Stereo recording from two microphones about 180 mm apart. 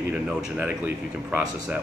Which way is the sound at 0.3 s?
5° right (ahead or behind).